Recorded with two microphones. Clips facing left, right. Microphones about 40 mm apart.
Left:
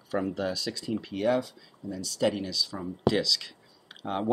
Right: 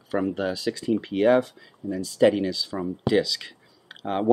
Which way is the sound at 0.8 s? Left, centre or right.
Right.